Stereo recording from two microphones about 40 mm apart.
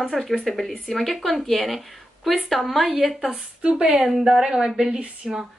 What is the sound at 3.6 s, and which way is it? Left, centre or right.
Speech, right.